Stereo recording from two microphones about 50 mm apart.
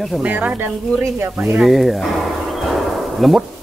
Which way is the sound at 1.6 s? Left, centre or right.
Centre.